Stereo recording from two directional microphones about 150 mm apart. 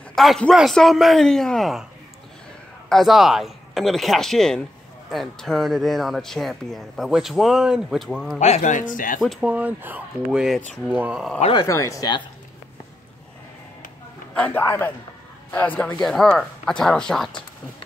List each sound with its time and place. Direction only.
0.1 s speech: centre (ahead or behind)
2.9 s speech: centre (ahead or behind)
8.4 s speech: 50° left (ahead or behind)
9.2 s speech: 5° right (ahead or behind)
11.5 s speech: 20° left (ahead or behind)
14.3 s a man's voice: 10° left (ahead or behind)